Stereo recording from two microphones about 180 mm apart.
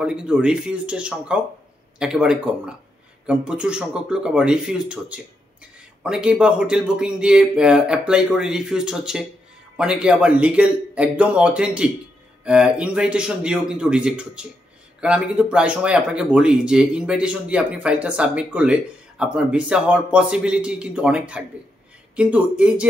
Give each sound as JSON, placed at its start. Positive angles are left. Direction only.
{"t": 0.0, "sound": "a man's voice", "side_deg": -5}